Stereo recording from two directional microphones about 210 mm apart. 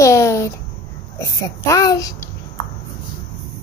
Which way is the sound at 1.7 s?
15° left (ahead or behind).